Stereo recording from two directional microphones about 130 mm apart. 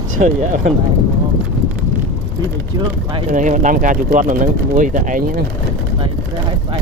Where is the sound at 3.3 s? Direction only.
75° right (ahead or behind).